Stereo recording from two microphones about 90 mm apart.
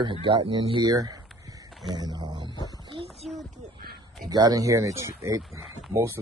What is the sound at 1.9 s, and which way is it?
Speech, 45° right (ahead or behind).